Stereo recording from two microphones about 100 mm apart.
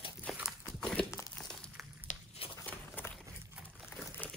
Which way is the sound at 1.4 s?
10° left (ahead or behind).